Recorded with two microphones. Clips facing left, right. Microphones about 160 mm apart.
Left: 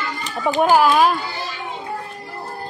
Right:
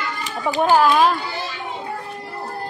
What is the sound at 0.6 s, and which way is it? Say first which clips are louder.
Speech: left 1 dB; 10° left (ahead or behind).